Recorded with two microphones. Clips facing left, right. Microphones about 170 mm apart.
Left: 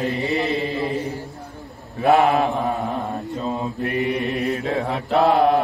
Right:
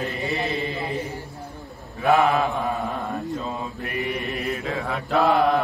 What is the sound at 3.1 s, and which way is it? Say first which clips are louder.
Mantra: left 2 dB; 20° left (ahead or behind).